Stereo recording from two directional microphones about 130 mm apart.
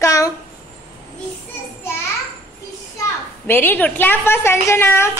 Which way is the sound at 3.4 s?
15° left (ahead or behind).